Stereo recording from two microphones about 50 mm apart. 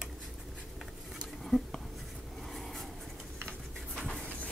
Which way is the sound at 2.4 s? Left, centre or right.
Centre.